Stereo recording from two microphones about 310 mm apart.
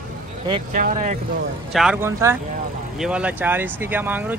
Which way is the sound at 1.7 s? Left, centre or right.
Centre.